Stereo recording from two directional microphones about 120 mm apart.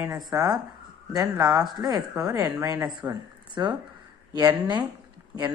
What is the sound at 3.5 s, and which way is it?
A woman's voice, 40° right (ahead or behind).